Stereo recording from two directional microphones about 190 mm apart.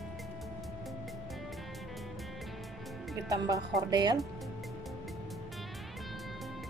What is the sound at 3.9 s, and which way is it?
Speech, 20° right (ahead or behind).